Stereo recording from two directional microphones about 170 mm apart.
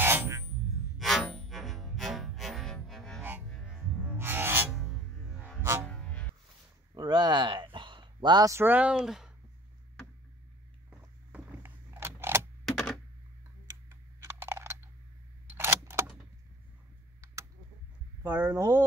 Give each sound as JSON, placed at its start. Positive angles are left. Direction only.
{"t": 0.0, "sound": "music", "side_deg": -15}
{"t": 0.9, "sound": "music", "side_deg": 0}
{"t": 3.2, "sound": "music", "side_deg": -10}
{"t": 3.4, "sound": "music", "side_deg": 5}
{"t": 4.0, "sound": "music", "side_deg": -10}
{"t": 4.7, "sound": "music", "side_deg": 0}
{"t": 6.9, "sound": "a sound", "side_deg": -25}
{"t": 10.9, "sound": "a sound", "side_deg": -10}
{"t": 12.6, "sound": "typewriter", "side_deg": 5}
{"t": 13.8, "sound": "computer keyboard", "side_deg": -15}
{"t": 15.5, "sound": "a sound", "side_deg": -15}
{"t": 18.2, "sound": "a sound", "side_deg": -10}